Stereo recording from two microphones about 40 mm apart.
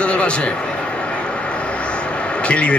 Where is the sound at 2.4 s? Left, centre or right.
Left.